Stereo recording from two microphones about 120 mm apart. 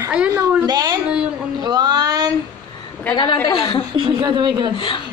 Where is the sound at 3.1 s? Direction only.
40° left (ahead or behind).